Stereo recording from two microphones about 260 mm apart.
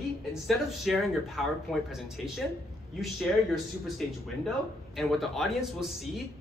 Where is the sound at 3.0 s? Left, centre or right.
Centre.